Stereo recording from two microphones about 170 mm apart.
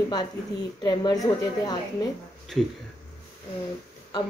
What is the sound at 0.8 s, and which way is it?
Speech, 20° left (ahead or behind).